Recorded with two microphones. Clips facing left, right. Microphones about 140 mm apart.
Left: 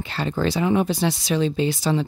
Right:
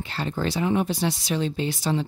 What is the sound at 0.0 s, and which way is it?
Speech, 90° left.